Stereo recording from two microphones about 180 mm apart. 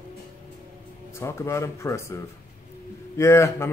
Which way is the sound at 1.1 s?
15° left (ahead or behind).